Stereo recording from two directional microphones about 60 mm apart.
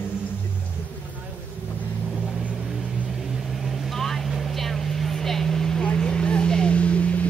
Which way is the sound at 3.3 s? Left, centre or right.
Centre.